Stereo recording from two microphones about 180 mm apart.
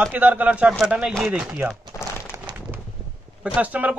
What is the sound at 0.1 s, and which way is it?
A man's voice, 10° right (ahead or behind).